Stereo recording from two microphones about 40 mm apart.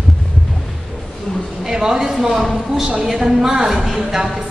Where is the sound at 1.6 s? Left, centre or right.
Centre.